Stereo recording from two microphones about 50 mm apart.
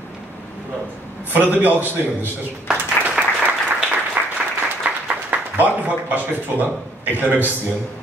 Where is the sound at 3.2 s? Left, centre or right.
Right.